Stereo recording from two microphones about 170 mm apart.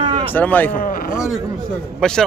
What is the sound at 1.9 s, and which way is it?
Speech, 5° left (ahead or behind).